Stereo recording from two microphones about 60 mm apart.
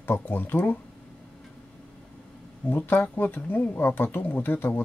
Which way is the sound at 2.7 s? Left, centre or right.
Left.